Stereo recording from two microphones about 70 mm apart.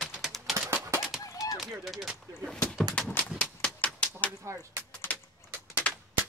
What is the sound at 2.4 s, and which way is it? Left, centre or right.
Speech, centre.